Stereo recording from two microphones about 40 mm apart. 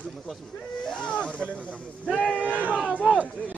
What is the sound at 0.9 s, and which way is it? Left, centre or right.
Speech, left.